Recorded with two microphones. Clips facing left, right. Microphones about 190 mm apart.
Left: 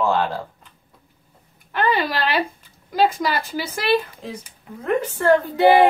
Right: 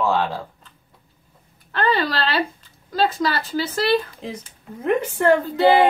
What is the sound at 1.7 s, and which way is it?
Speech, 15° left (ahead or behind).